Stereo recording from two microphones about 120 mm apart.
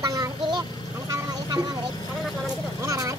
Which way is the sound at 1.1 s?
35° right (ahead or behind).